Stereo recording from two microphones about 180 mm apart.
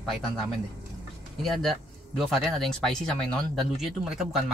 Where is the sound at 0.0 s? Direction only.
Centre (ahead or behind).